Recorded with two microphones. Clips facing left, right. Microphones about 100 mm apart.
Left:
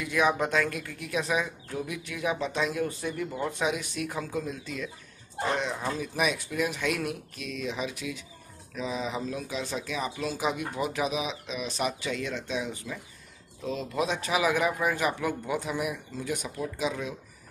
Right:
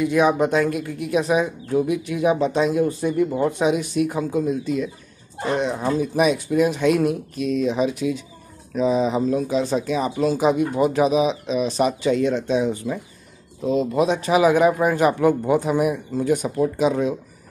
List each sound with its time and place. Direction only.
0.0 s speech: 30° right (ahead or behind)
5.8 s speech: 25° right (ahead or behind)
13.6 s speech: 20° right (ahead or behind); by 17.2 s 40° right (ahead or behind)